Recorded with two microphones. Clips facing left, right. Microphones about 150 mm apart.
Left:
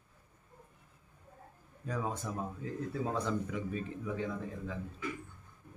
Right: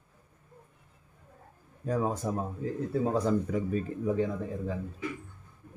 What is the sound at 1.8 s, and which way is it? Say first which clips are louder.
A man's voice: right 7 dB; 40° right (ahead or behind).